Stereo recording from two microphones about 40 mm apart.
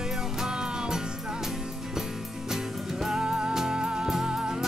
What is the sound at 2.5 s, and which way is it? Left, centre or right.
Music, centre.